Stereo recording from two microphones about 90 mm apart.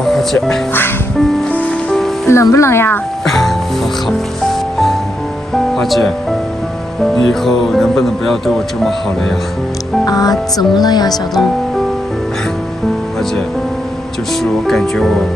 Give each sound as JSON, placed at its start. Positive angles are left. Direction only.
{"t": 0.0, "sound": "music", "side_deg": 5}
{"t": 2.2, "sound": "speech", "side_deg": 35}
{"t": 3.3, "sound": "music", "side_deg": 5}
{"t": 7.2, "sound": "music", "side_deg": 5}
{"t": 10.0, "sound": "speech", "side_deg": 45}
{"t": 14.4, "sound": "music", "side_deg": 5}